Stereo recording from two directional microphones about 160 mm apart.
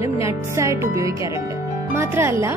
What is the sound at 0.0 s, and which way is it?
Speech, 20° right (ahead or behind).